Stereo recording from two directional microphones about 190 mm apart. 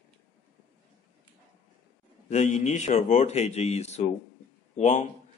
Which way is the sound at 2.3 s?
40° left (ahead or behind).